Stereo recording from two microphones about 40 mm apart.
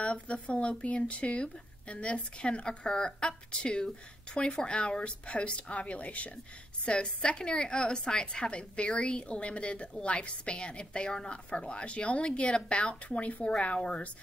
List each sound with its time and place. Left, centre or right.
0.0 s speech: left
13.7 s speech: left